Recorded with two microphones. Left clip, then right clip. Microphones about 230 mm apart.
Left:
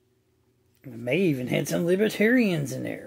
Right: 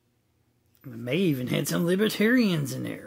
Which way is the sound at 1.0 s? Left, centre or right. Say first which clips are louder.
Left 2 dB; centre.